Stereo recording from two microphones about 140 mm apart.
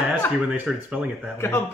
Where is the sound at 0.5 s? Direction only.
10° right (ahead or behind).